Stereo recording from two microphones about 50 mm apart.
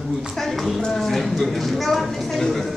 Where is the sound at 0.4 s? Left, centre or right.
Centre.